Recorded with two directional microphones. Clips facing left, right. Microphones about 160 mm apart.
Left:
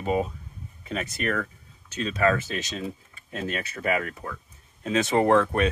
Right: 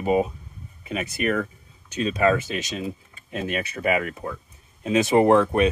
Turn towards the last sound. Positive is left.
turn(degrees=-15)  # may be behind; listen again after turning